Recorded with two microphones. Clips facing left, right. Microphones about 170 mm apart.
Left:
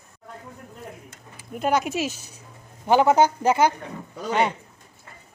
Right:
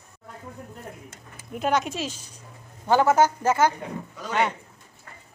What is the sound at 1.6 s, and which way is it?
Speech, 5° left (ahead or behind).